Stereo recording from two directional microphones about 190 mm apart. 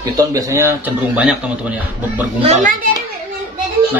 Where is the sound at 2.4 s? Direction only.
40° right (ahead or behind).